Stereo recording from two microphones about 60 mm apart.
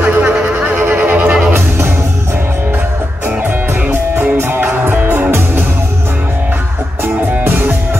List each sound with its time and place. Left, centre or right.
0.0 s music: right
3.9 s music: right
7.4 s music: right